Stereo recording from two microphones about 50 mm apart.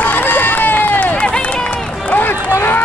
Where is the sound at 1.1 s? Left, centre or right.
Left.